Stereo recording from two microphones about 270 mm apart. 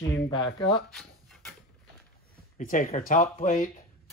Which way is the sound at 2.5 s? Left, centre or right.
Left.